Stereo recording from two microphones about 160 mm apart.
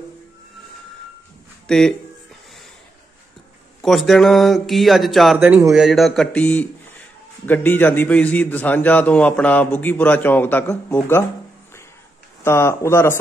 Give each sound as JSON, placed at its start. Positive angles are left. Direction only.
{"t": 1.7, "sound": "speech", "side_deg": 0}
{"t": 3.8, "sound": "a man's voice", "side_deg": 0}
{"t": 12.4, "sound": "a man's voice", "side_deg": 15}